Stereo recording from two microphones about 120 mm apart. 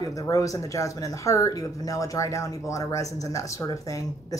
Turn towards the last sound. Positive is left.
turn(degrees=25)  # may be behind; listen again after turning